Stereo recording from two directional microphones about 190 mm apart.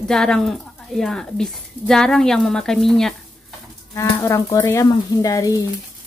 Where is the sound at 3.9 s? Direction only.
15° left (ahead or behind).